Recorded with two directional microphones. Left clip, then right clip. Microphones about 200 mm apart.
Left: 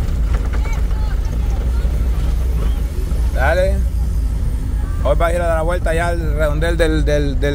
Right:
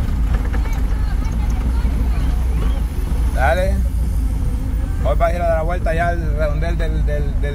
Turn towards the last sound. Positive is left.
turn(degrees=45)  # may be behind; listen again after turning